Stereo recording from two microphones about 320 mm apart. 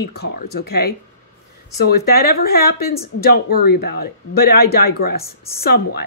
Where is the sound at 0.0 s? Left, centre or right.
Left.